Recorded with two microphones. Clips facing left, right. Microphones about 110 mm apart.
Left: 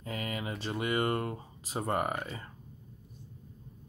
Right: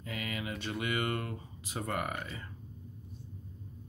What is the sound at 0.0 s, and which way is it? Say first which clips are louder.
Speech: left 2 dB; 35° left (ahead or behind).